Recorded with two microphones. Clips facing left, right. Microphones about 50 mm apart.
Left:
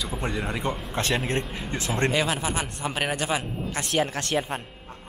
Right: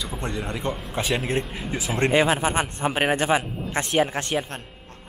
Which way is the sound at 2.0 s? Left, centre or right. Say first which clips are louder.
Right 5 dB; right.